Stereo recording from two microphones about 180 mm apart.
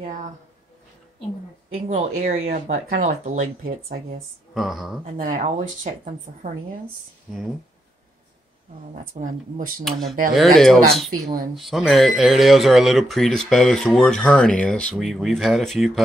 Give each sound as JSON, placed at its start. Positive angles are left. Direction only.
{"t": 1.9, "sound": "speech", "side_deg": -40}
{"t": 4.6, "sound": "speech", "side_deg": 0}
{"t": 5.1, "sound": "a woman's voice", "side_deg": -45}
{"t": 9.1, "sound": "speech", "side_deg": -50}
{"t": 9.8, "sound": "speech", "side_deg": 0}